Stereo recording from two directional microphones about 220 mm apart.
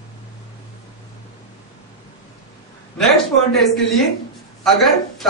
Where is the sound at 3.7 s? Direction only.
Centre (ahead or behind).